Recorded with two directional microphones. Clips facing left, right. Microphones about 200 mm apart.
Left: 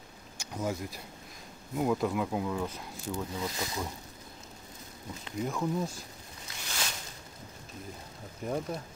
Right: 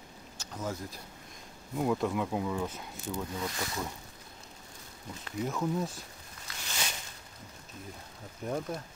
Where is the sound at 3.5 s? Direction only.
15° left (ahead or behind).